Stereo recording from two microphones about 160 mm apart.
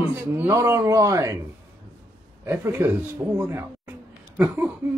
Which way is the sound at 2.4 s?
15° right (ahead or behind).